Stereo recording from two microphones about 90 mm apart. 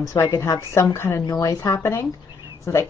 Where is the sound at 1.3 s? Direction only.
40° left (ahead or behind).